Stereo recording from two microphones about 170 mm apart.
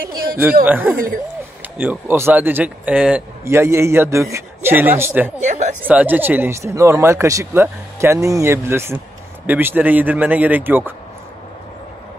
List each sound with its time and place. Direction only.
0.7 s speech: 10° right (ahead or behind)
0.9 s speech: 55° right (ahead or behind)
1.6 s speech: 10° right (ahead or behind)
5.4 s speech: 45° right (ahead or behind)
5.9 s speech: 10° right (ahead or behind)